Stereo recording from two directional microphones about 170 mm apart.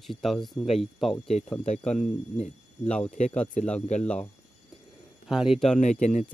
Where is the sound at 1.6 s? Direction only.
40° left (ahead or behind).